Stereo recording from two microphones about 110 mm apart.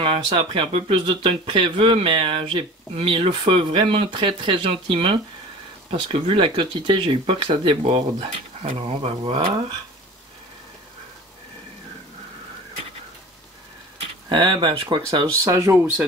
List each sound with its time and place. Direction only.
0.0 s speech: 50° right (ahead or behind)
14.3 s speech: 45° right (ahead or behind)
15.4 s speech: 30° right (ahead or behind)